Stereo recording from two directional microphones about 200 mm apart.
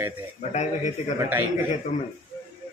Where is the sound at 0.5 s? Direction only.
35° left (ahead or behind).